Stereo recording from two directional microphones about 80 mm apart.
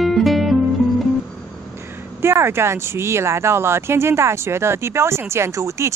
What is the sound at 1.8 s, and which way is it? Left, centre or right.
Speech, right.